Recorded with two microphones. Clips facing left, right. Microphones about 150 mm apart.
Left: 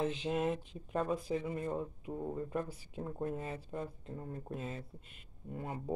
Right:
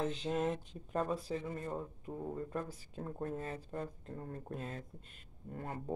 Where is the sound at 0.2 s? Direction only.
5° left (ahead or behind).